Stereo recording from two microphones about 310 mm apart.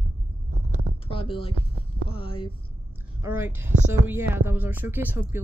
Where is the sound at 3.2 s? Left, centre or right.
Centre.